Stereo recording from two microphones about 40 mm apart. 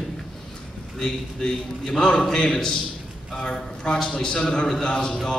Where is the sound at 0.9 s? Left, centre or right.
Centre.